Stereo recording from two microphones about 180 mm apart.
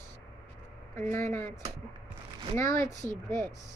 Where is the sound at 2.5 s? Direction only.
15° left (ahead or behind).